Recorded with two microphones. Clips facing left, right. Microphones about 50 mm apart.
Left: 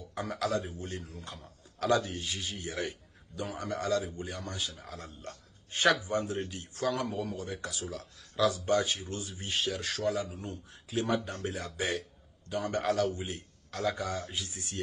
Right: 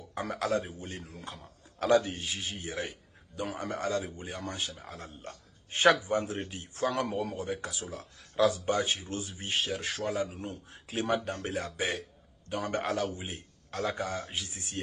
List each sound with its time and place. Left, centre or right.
0.2 s a man's voice: right
2.7 s a man's voice: centre
3.6 s a man's voice: right
4.8 s a man's voice: right
5.7 s a man's voice: right
6.9 s speech: right
7.3 s a man's voice: right